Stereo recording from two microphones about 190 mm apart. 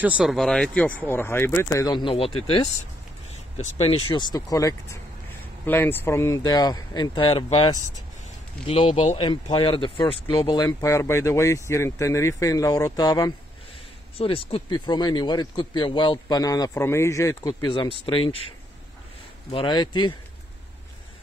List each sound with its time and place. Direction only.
0.2 s speech: centre (ahead or behind); by 10.6 s 25° left (ahead or behind)
10.6 s speech: 15° left (ahead or behind)
19.5 s speech: 25° left (ahead or behind)